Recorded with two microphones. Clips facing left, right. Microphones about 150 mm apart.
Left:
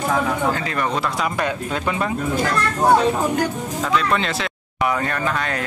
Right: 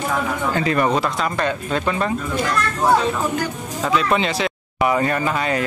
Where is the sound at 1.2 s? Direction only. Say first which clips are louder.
Right 1 dB; 10° left (ahead or behind).